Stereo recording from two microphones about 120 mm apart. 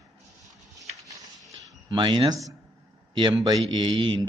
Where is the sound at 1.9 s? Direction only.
40° right (ahead or behind).